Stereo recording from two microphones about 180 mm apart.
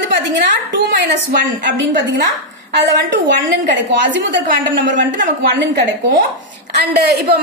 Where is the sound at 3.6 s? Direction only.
80° right.